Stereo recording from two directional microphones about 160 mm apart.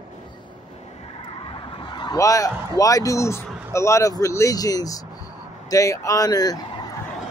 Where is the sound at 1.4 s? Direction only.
30° left (ahead or behind).